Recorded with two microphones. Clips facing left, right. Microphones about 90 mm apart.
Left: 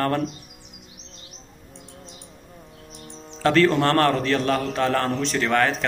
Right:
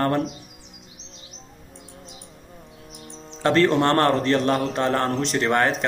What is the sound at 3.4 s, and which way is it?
A man's voice, 25° right (ahead or behind).